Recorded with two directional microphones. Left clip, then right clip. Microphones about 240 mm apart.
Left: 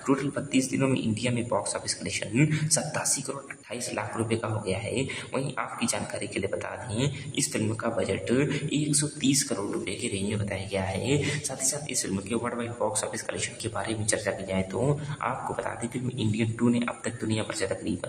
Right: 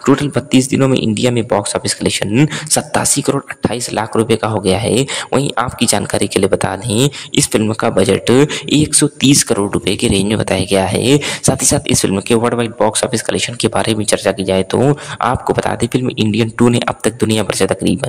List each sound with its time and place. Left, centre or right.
0.0 s speech: right